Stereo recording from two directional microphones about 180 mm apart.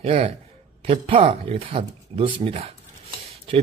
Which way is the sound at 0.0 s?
35° right (ahead or behind).